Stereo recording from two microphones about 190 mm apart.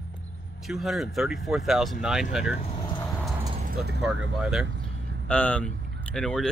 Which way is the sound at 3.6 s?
55° right (ahead or behind).